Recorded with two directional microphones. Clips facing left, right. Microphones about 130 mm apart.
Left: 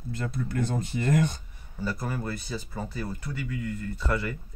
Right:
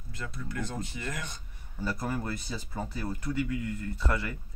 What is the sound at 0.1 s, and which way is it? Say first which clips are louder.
Speech: left 7 dB; 35° left (ahead or behind).